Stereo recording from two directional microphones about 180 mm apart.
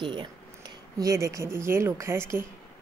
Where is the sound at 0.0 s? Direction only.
25° right (ahead or behind).